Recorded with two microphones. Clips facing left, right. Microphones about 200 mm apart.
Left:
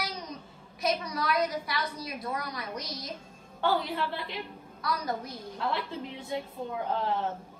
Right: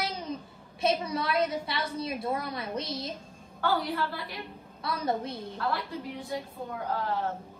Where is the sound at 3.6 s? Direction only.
25° left (ahead or behind).